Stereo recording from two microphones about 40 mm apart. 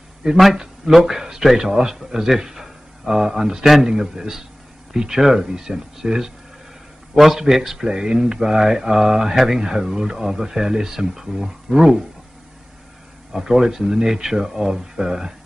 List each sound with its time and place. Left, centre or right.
0.2 s a man's voice: centre
13.3 s a man's voice: centre